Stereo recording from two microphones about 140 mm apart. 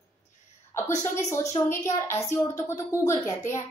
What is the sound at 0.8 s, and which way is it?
A woman's voice, 20° left (ahead or behind).